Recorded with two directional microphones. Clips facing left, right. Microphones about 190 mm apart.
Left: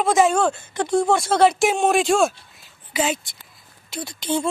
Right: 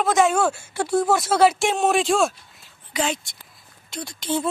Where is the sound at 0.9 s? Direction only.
5° right (ahead or behind).